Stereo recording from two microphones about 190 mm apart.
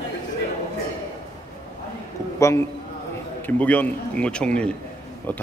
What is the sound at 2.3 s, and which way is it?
A man's voice, 15° left (ahead or behind).